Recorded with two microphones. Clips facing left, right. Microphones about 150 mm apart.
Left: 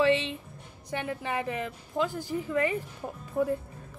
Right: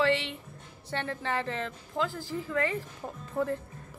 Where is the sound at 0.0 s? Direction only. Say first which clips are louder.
Left 3 dB; 20° left (ahead or behind).